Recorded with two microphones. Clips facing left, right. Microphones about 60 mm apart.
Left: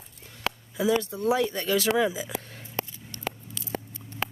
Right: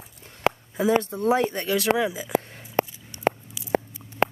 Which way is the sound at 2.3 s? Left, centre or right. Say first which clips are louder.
Right 10 dB; right.